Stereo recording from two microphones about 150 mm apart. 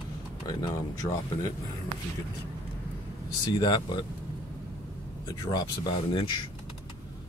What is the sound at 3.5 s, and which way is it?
Speech, 25° left (ahead or behind).